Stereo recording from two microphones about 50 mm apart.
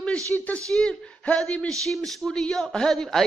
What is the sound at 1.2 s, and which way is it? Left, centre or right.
Speech, left.